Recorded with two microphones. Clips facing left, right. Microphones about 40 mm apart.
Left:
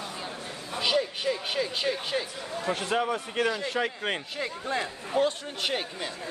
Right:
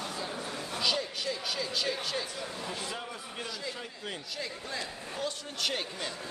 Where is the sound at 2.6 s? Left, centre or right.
Left.